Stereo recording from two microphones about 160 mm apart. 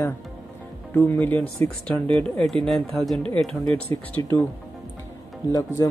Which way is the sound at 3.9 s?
20° left (ahead or behind).